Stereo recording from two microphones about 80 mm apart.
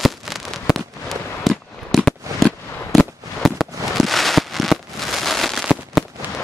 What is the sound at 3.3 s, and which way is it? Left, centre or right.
Fireworks, centre.